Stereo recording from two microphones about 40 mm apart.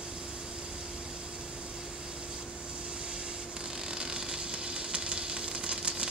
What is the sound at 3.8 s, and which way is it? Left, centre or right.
Sizzle, centre.